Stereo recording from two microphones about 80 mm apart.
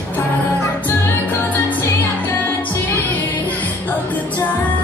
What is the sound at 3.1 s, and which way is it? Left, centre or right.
Music, left.